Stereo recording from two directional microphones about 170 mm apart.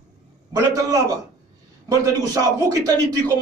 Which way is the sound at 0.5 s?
20° right (ahead or behind).